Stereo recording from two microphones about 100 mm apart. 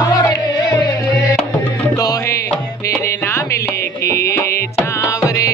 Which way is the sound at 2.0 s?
35° left (ahead or behind).